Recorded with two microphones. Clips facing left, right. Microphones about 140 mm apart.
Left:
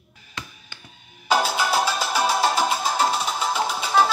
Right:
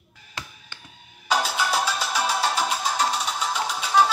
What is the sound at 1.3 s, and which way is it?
Music, 5° left (ahead or behind).